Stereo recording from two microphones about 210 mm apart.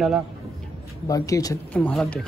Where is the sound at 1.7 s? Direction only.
5° left (ahead or behind).